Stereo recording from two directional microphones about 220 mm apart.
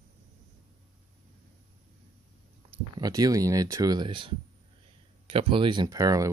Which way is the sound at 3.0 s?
15° right (ahead or behind).